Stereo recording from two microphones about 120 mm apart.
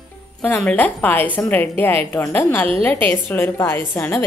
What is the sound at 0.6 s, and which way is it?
A woman's voice, 10° left (ahead or behind).